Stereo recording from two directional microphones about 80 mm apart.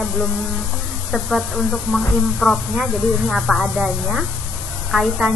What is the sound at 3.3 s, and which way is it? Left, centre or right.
A woman's voice, centre.